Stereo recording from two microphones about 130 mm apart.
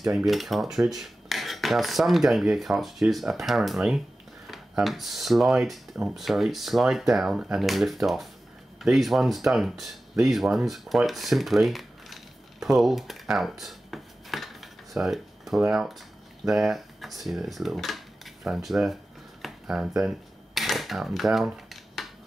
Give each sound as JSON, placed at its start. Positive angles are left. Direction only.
{"t": 0.0, "sound": "speech", "side_deg": -5}
{"t": 10.2, "sound": "a sound", "side_deg": 0}
{"t": 15.7, "sound": "speech", "side_deg": 0}
{"t": 19.4, "sound": "typewriter", "side_deg": -5}